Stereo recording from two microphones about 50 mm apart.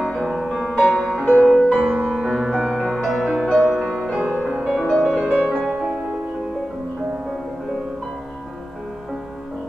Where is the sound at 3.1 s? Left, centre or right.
Centre.